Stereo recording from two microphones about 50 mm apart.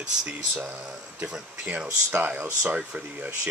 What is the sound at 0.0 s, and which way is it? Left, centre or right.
Speech, centre.